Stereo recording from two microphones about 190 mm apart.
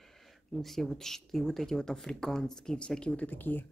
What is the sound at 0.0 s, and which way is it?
Speech, centre (ahead or behind).